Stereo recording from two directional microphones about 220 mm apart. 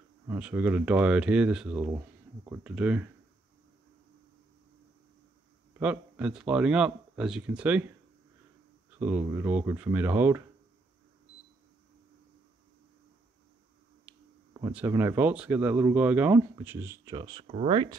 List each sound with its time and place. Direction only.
0.3 s speech: 5° right (ahead or behind)
5.8 s speech: 5° right (ahead or behind)
9.0 s speech: 10° right (ahead or behind)
14.1 s a sound: 5° right (ahead or behind)
14.7 s speech: 10° right (ahead or behind)